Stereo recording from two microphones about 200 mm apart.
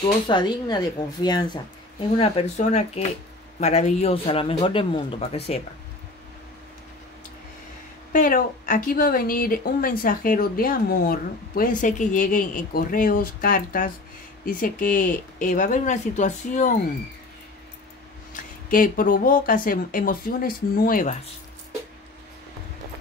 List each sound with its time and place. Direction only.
0.3 s speech: 20° left (ahead or behind)
8.1 s speech: 45° left (ahead or behind)
18.3 s speech: 45° left (ahead or behind)